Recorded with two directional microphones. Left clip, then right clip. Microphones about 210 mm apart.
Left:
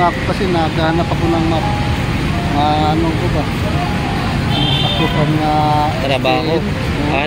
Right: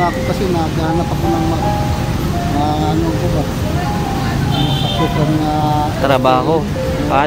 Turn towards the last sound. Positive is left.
turn(degrees=-30)  # may be behind; listen again after turning